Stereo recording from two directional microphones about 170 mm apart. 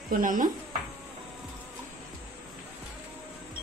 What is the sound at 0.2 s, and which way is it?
Speech, 50° right (ahead or behind).